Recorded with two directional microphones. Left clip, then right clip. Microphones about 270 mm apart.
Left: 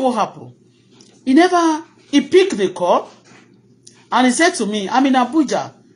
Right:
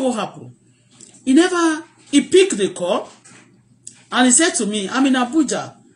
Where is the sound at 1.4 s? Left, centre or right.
Centre.